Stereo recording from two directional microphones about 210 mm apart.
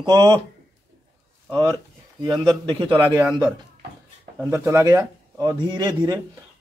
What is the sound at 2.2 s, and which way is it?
Speech, 20° right (ahead or behind).